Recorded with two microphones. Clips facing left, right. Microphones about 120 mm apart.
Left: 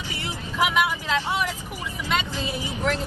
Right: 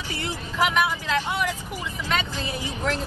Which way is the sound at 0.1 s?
15° left (ahead or behind).